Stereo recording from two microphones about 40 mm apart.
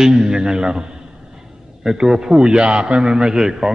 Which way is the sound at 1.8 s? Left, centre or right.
Centre.